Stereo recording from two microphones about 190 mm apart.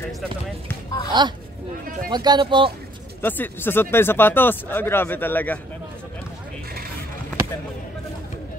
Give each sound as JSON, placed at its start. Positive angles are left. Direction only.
{"t": 1.1, "sound": "speech", "side_deg": -25}
{"t": 3.2, "sound": "speech", "side_deg": 10}